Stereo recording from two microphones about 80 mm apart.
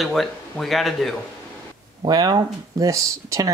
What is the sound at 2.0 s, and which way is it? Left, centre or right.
Speech, right.